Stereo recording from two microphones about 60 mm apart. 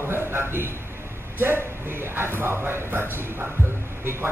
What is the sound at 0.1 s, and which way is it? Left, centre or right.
A man's voice, right.